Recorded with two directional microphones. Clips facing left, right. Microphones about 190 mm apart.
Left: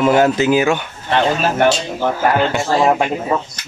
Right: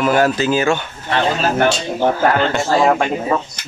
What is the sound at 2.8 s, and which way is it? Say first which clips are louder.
Speech: left 1 dB; 15° left (ahead or behind).